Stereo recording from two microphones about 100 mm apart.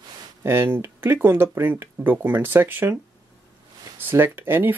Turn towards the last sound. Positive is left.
turn(degrees=-20)  # may be behind; listen again after turning